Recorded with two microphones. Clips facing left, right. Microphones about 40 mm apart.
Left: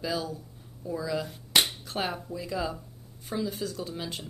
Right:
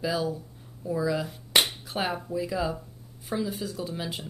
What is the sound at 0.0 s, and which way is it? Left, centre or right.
Speech, centre.